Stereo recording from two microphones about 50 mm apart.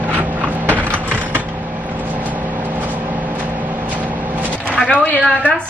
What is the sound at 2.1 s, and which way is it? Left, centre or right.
Vehicle, right.